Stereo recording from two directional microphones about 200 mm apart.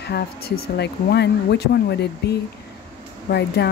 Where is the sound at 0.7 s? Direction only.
55° left (ahead or behind).